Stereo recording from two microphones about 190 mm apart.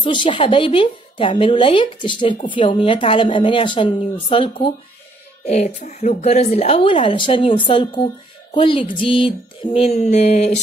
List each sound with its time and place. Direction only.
0.0 s speech: 25° left (ahead or behind)